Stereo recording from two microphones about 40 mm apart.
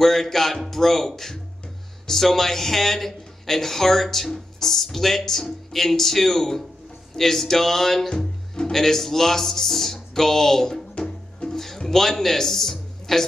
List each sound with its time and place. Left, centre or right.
0.0 s speech: centre
11.0 s music: left
11.4 s music: centre
11.8 s speech: centre